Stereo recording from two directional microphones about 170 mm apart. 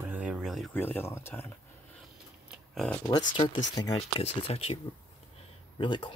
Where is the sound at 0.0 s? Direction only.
10° right (ahead or behind).